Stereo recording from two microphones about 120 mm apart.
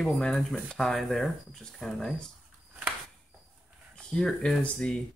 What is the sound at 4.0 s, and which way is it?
Speech, 5° left (ahead or behind).